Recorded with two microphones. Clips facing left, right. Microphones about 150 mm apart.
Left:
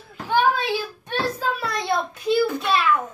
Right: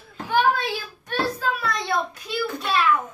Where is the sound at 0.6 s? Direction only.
20° left (ahead or behind).